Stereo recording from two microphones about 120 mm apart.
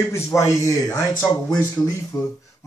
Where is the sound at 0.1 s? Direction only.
25° left (ahead or behind).